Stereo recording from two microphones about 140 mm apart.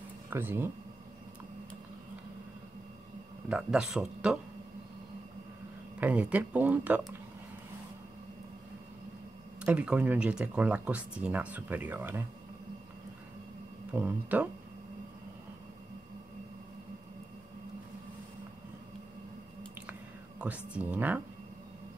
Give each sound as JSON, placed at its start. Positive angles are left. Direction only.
{"t": 0.3, "sound": "speech", "side_deg": -15}
{"t": 3.4, "sound": "speech", "side_deg": -5}
{"t": 5.9, "sound": "speech", "side_deg": -10}
{"t": 9.6, "sound": "speech", "side_deg": -10}
{"t": 13.9, "sound": "speech", "side_deg": -10}
{"t": 19.9, "sound": "whispering", "side_deg": -10}